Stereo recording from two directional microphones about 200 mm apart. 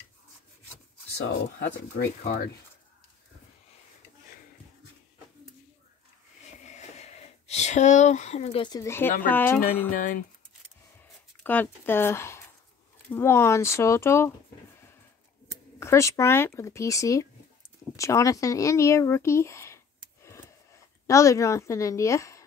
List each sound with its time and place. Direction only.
1.1 s speech: 55° left (ahead or behind)
6.6 s a sound: 35° left (ahead or behind); by 9.1 s 15° left (ahead or behind)
9.2 s speech: 10° left (ahead or behind)
11.4 s speech: 10° left (ahead or behind)
15.8 s speech: 15° left (ahead or behind)